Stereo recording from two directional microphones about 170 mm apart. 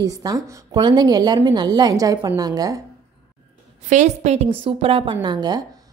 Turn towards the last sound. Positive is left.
turn(degrees=-25)  # may be behind; listen again after turning